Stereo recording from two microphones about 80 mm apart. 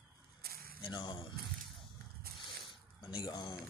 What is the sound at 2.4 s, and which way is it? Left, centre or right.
Zipper, left.